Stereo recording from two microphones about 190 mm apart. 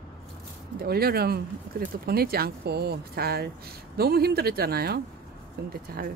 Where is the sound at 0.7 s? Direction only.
55° right (ahead or behind).